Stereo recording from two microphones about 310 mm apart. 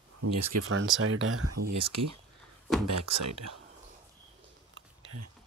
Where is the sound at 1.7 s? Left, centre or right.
Right.